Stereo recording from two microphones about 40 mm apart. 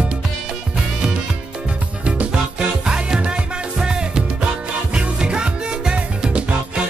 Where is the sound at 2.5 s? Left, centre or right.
Right.